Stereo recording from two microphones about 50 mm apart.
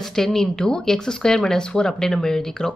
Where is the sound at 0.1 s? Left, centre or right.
Centre.